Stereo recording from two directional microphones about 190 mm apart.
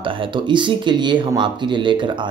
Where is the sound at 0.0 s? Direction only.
25° right (ahead or behind).